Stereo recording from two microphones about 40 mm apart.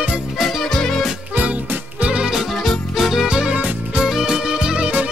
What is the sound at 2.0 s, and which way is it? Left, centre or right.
Music, right.